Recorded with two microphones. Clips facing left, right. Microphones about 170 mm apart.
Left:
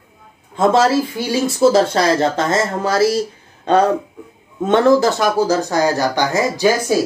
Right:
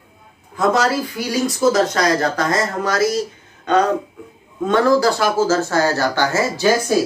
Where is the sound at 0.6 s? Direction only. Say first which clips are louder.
Left 4 dB; 25° left (ahead or behind).